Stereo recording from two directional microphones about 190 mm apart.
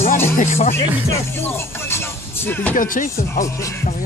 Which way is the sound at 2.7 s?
45° left (ahead or behind).